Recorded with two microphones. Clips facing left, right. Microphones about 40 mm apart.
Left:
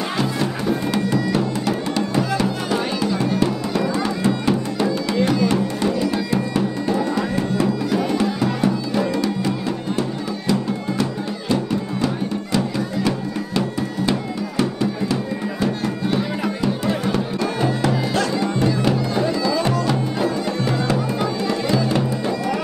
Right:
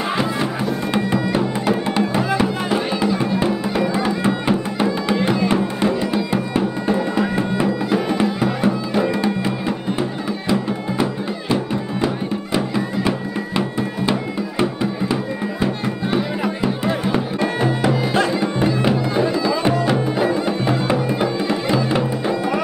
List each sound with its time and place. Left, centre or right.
0.9 s music: right